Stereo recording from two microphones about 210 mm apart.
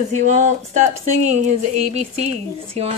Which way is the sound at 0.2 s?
35° right (ahead or behind).